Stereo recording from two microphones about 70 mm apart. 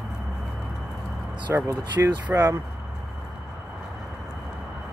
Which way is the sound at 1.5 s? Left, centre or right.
Right.